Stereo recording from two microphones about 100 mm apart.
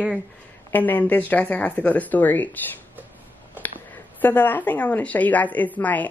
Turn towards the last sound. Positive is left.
turn(degrees=15)  # may be behind; listen again after turning